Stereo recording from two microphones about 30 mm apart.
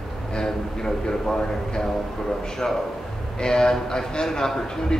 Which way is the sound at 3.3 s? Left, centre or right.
Left.